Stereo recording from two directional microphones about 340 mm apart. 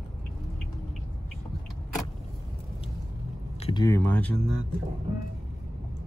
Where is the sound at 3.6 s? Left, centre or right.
Centre.